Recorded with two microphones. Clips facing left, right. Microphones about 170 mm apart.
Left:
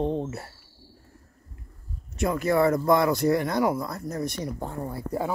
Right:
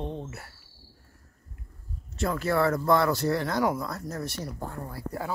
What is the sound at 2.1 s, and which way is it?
Speech, 15° left (ahead or behind).